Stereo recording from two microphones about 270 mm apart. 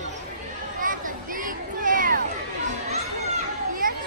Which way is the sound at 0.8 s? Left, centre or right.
Right.